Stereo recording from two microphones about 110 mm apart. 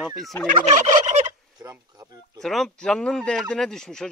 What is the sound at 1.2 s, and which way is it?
Fowl, 35° right (ahead or behind).